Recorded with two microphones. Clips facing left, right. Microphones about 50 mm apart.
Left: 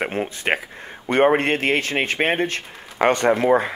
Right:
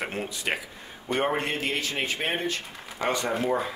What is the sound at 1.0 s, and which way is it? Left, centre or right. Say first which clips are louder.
Speech: left 9 dB; left.